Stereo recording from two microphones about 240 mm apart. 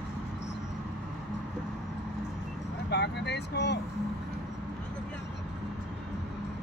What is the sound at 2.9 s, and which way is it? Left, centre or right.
Speech, left.